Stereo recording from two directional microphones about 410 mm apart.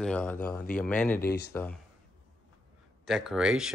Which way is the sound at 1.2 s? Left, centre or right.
Left.